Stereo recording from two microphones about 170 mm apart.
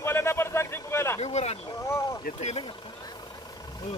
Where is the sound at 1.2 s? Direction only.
40° left (ahead or behind).